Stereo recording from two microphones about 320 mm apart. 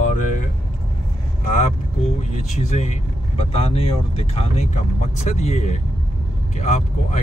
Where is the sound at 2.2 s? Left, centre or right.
Left.